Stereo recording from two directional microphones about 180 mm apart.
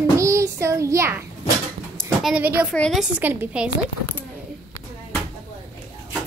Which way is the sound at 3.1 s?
10° right (ahead or behind).